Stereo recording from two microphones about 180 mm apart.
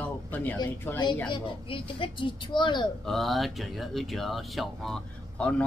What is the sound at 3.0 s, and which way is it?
Speech, centre (ahead or behind).